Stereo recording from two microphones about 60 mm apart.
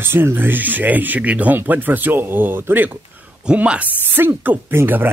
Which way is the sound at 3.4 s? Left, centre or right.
Centre.